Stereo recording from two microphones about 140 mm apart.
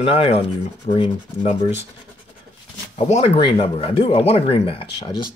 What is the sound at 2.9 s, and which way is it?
Speech, 50° left (ahead or behind).